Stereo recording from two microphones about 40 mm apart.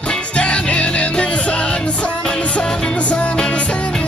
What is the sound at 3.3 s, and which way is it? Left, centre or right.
Music, centre.